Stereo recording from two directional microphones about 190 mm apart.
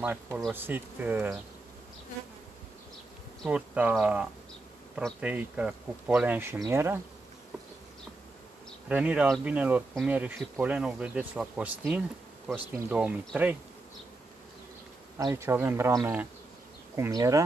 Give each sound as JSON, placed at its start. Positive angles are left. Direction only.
{"t": 0.0, "sound": "speech", "side_deg": -10}
{"t": 3.4, "sound": "speech", "side_deg": -5}
{"t": 8.8, "sound": "speech", "side_deg": -5}
{"t": 15.1, "sound": "speech", "side_deg": -15}